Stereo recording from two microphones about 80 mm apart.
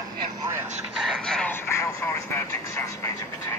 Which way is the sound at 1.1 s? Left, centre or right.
Centre.